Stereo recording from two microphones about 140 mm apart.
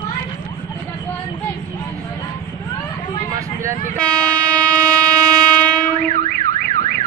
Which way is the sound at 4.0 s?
5° left (ahead or behind).